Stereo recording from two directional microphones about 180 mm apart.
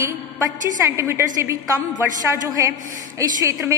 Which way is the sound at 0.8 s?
15° right (ahead or behind).